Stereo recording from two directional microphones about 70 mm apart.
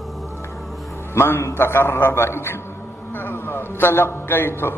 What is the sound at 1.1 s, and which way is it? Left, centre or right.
A man's voice, left.